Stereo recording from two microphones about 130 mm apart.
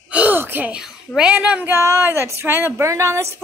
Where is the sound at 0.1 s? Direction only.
15° right (ahead or behind).